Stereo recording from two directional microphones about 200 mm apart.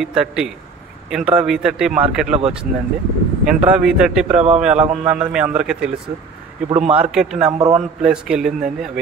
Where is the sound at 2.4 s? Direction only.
30° right (ahead or behind).